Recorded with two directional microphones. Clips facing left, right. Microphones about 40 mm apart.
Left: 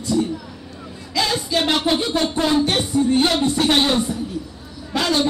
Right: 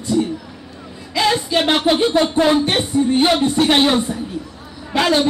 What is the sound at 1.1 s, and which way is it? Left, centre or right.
Speech, right.